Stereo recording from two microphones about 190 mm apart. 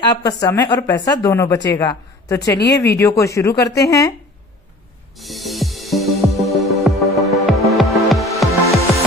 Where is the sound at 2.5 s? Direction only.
60° left (ahead or behind).